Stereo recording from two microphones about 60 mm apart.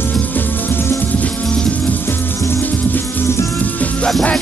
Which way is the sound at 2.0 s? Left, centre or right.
Left.